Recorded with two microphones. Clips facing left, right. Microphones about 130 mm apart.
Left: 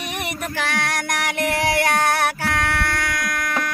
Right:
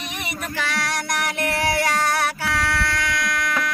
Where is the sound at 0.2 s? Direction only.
55° left (ahead or behind).